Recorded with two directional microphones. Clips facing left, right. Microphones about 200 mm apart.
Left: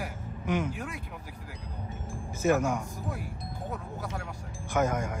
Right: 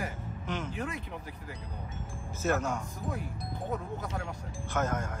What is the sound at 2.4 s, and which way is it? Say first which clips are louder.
Speech: left 5 dB; 10° left (ahead or behind).